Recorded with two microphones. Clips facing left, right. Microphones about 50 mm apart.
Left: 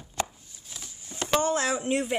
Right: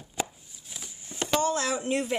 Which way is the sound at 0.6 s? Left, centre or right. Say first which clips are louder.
Even; centre.